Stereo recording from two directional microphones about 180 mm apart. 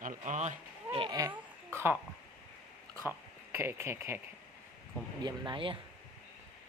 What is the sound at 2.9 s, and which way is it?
Speech, 15° right (ahead or behind).